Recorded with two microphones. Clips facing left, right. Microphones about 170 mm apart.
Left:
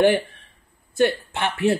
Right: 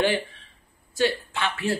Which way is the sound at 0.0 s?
60° left (ahead or behind).